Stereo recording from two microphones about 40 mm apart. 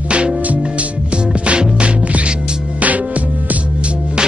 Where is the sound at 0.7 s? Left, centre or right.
Right.